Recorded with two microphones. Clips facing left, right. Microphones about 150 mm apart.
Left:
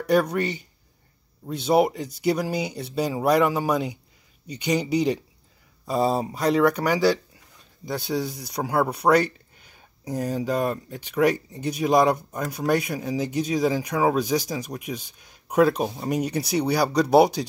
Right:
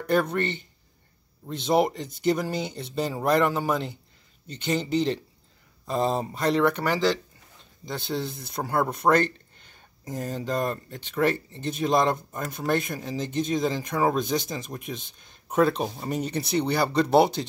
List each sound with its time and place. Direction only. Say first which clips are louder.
0.0 s speech: left 3 dB; 10° left (ahead or behind)